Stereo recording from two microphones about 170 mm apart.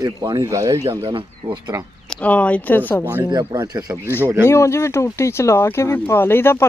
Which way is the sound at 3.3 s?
25° right (ahead or behind).